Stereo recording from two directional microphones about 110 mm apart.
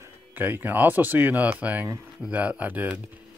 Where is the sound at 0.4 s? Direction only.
15° right (ahead or behind).